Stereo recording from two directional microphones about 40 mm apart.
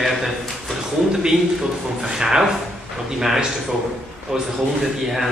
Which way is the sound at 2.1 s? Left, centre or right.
Centre.